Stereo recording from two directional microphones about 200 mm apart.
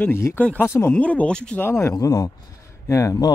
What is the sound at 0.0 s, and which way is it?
Speech, 10° left (ahead or behind).